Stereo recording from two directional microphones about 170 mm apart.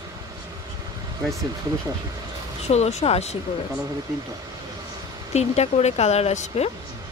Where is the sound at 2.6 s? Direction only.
40° left (ahead or behind).